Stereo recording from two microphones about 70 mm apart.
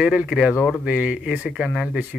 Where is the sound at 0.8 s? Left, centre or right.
Centre.